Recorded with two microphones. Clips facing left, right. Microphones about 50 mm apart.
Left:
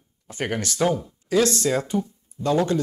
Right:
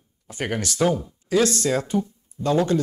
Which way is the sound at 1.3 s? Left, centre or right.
Right.